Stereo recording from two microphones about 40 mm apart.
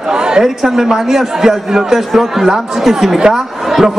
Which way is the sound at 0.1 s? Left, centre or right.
Centre.